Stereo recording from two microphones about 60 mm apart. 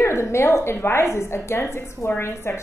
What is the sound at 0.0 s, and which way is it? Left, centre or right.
A woman's voice, left.